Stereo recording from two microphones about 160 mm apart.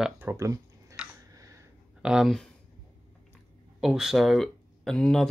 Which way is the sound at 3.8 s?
Centre (ahead or behind).